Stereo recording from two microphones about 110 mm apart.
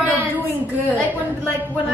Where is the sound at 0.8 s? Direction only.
15° left (ahead or behind).